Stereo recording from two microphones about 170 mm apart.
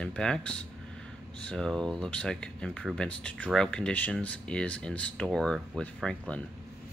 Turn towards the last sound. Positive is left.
turn(degrees=5)  # may be behind; listen again after turning